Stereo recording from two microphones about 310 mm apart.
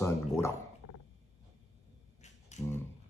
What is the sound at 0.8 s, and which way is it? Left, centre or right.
Roaring cats, left.